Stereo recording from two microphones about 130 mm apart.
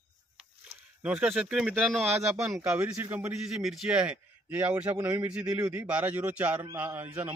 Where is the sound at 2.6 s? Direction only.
10° right (ahead or behind).